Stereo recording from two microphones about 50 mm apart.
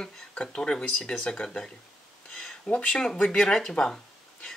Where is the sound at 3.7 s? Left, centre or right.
Centre.